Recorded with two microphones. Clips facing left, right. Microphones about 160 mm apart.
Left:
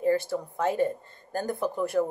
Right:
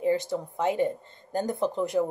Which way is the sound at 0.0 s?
20° right (ahead or behind).